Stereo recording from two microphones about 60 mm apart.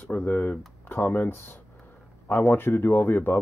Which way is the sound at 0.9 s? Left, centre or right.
Left.